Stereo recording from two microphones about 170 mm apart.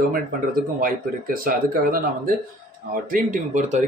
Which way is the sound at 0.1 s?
55° right (ahead or behind).